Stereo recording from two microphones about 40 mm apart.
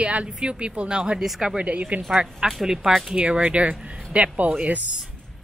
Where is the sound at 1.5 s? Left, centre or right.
Right.